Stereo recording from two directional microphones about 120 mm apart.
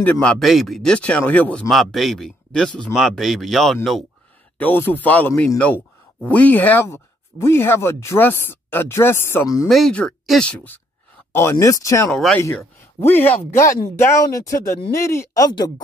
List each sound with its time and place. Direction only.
0.0 s speech: 10° left (ahead or behind)
1.7 s speech: centre (ahead or behind)
4.6 s speech: 15° left (ahead or behind)
9.7 s speech: 5° left (ahead or behind)
11.6 s speech: 30° left (ahead or behind)
12.1 s speech: 5° left (ahead or behind)
13.0 s speech: 15° left (ahead or behind)